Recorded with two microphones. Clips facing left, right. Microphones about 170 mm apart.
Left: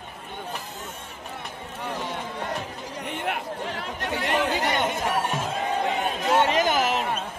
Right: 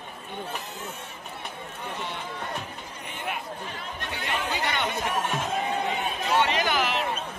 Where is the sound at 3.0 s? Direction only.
65° left (ahead or behind).